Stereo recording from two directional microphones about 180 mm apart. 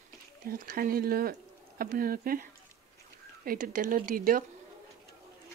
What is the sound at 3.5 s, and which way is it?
Speech, 50° right (ahead or behind).